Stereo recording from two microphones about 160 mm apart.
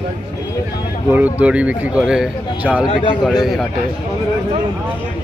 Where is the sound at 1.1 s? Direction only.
10° right (ahead or behind).